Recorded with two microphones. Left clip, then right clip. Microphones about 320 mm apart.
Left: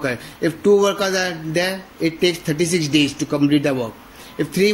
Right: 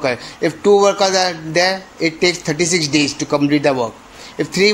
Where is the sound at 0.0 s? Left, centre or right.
Centre.